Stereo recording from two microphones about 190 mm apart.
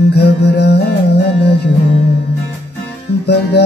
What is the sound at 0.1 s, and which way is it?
Music, 60° left (ahead or behind).